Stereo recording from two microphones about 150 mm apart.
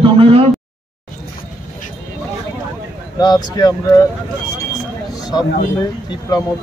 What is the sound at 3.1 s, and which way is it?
Speech, 25° left (ahead or behind).